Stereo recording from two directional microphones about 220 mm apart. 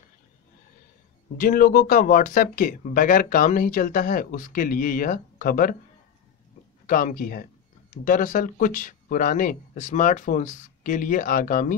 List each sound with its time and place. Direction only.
1.4 s speech: 40° left (ahead or behind)
6.9 s speech: 40° left (ahead or behind)